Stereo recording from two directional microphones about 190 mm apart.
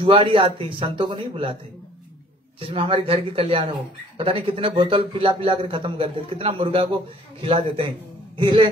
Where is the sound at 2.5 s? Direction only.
30° right (ahead or behind).